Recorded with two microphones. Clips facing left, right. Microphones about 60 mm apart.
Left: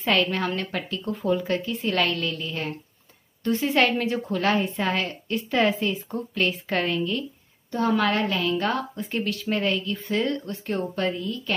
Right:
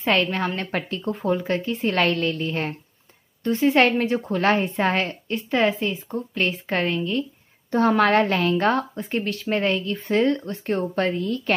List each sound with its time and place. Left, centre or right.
0.0 s speech: right
0.7 s a woman's voice: right
3.4 s speech: centre
4.0 s a woman's voice: right
5.3 s speech: centre
7.7 s a woman's voice: right
8.9 s a woman's voice: right
11.2 s a woman's voice: right